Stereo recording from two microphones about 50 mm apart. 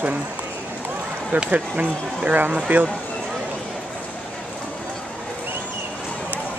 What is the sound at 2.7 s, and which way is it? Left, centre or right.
Speech, right.